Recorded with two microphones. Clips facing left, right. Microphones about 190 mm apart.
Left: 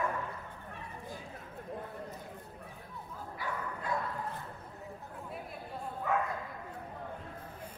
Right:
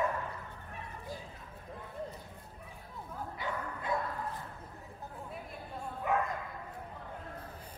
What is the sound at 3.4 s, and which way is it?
Bow-wow, 20° right (ahead or behind).